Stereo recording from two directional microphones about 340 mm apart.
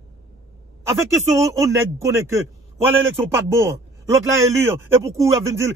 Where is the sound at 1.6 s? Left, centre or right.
Centre.